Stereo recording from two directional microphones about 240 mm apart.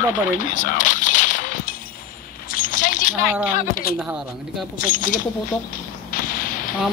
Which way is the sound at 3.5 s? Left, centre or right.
Left.